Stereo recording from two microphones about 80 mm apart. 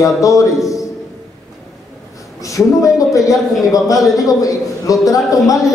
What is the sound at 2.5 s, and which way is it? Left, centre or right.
A man's voice, left.